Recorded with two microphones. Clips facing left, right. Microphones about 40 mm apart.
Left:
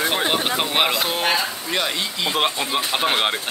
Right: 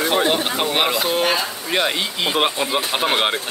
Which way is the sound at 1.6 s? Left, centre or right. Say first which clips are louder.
Right 3 dB; centre.